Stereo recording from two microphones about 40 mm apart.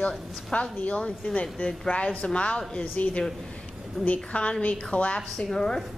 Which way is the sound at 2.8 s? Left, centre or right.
Left.